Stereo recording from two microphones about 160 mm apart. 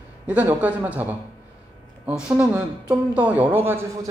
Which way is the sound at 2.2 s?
5° right (ahead or behind).